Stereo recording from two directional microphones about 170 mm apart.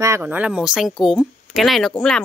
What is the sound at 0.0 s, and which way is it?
Speech, 15° right (ahead or behind).